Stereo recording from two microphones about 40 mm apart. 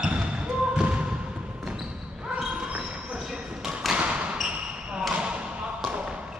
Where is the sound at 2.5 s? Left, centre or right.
Right.